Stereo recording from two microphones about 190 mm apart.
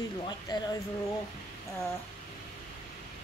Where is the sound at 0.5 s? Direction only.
25° left (ahead or behind).